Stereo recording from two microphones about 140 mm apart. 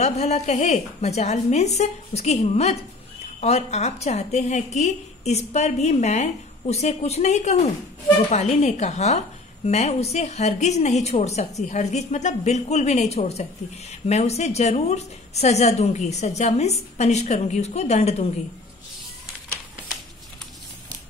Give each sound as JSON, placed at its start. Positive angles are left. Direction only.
{"t": 0.0, "sound": "a woman's voice", "side_deg": 50}